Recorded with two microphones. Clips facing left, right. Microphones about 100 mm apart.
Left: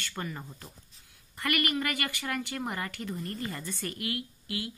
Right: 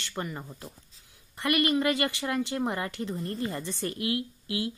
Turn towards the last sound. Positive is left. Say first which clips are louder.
# right 5 dB
turn(degrees=-25)  # may be behind; listen again after turning